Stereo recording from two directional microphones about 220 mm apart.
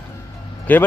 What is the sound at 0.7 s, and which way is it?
Speech, 10° left (ahead or behind).